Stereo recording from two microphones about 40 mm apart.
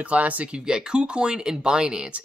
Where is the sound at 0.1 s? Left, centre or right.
Right.